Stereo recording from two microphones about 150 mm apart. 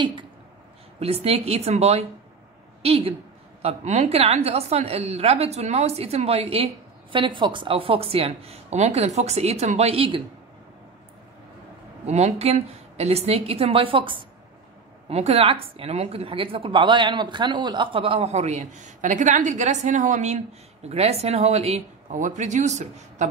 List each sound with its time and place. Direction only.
0.0 s speech: 35° right (ahead or behind)
0.9 s a woman's voice: 45° right (ahead or behind)
12.1 s a woman's voice: 45° right (ahead or behind)